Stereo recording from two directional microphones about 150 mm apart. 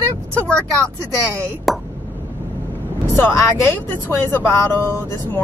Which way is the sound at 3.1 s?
15° left (ahead or behind).